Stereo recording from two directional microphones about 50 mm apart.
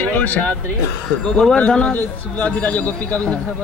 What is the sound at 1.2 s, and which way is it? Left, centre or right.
Speech, centre.